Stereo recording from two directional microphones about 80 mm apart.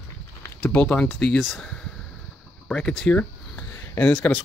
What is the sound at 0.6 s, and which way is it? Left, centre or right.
Speech, centre.